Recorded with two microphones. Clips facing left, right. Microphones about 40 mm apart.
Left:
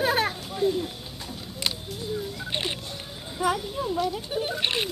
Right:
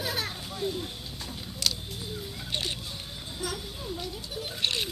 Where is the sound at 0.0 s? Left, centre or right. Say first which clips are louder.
Left 9 dB; left.